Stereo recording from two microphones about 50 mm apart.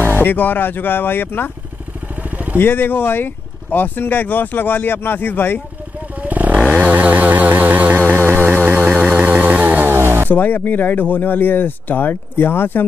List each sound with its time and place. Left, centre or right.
0.2 s speech: left
2.3 s vehicle: right
2.6 s speech: left
6.2 s a sound: right
9.0 s chainsaw: right
9.9 s vehicle: right
10.3 s speech: left